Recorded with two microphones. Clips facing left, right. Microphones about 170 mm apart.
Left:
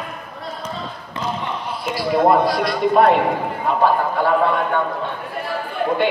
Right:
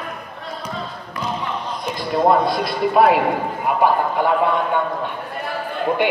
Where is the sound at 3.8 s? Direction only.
15° right (ahead or behind).